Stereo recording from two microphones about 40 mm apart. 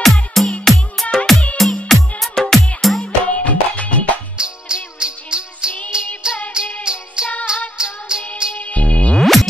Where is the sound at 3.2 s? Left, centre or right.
Left.